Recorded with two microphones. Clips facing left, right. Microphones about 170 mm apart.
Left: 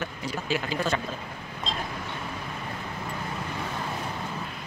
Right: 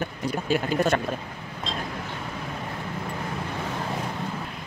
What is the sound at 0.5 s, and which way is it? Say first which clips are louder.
Speech: right 5 dB; 50° right (ahead or behind).